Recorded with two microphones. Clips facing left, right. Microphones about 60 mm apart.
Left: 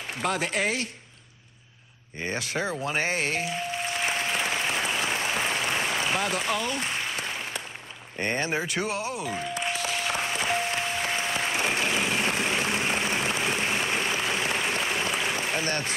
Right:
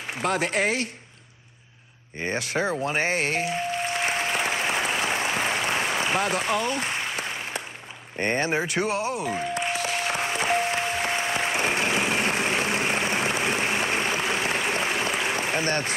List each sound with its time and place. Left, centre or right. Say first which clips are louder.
0.2 s speech: right 3 dB; right
2.1 s speech: right 3 dB; right
3.5 s applause: right 3 dB; right
6.1 s speech: right 3 dB; right
8.2 s speech: right 3 dB; right
8.6 s speech: right 4 dB; right
9.7 s music: right 2 dB; right
10.1 s applause: right 4 dB; right
11.6 s vehicle: right 2 dB; right
13.0 s applause: right 2 dB; centre
15.6 s speech: right 3 dB; right